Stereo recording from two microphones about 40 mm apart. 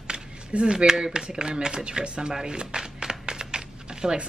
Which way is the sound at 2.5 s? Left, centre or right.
Right.